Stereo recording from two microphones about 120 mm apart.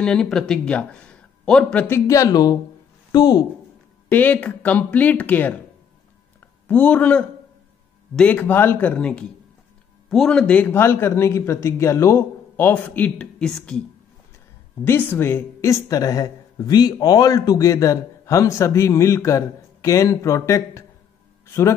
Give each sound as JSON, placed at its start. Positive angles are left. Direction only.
{"t": 0.0, "sound": "speech", "side_deg": 5}
{"t": 1.9, "sound": "speech", "side_deg": 25}
{"t": 4.1, "sound": "speech", "side_deg": 15}
{"t": 6.7, "sound": "speech", "side_deg": 10}
{"t": 14.9, "sound": "speech", "side_deg": 15}